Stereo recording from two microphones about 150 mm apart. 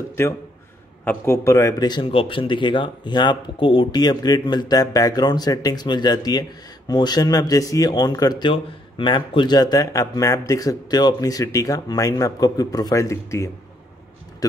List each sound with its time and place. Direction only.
1.0 s speech: 20° left (ahead or behind)